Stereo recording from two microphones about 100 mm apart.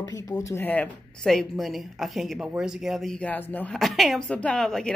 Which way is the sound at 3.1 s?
15° left (ahead or behind).